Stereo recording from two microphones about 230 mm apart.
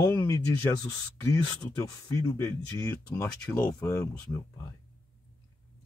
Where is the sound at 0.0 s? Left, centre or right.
Centre.